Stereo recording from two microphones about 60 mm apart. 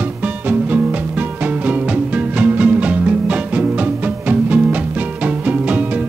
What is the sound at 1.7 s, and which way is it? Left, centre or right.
Music, right.